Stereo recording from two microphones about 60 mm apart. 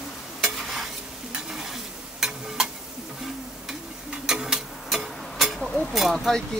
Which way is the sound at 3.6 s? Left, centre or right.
Centre.